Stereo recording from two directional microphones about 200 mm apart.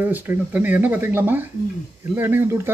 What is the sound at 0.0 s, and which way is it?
Speech, 10° right (ahead or behind).